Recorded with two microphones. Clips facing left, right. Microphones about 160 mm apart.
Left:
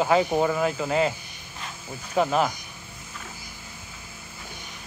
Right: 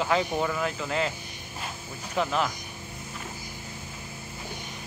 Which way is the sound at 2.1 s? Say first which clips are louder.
Left 5 dB; 40° left (ahead or behind).